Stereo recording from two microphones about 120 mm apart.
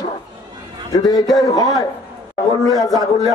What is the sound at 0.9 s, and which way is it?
Speech, 35° left (ahead or behind).